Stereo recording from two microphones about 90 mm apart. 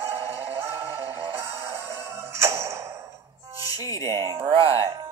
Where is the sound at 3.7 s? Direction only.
40° left (ahead or behind).